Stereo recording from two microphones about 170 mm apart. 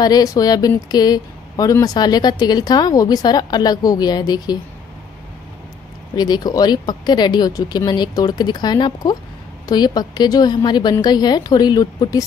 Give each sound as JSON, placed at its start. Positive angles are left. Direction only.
{"t": 0.0, "sound": "speech", "side_deg": 20}
{"t": 6.1, "sound": "speech", "side_deg": 25}